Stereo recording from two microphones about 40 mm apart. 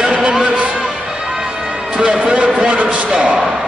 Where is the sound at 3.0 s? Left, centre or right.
Right.